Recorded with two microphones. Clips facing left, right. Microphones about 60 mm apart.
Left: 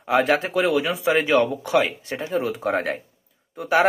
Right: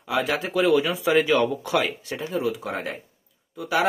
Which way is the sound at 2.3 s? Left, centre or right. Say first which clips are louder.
Left 4 dB; left.